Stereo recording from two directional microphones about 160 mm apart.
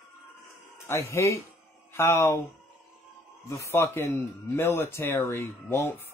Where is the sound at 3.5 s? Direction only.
15° left (ahead or behind).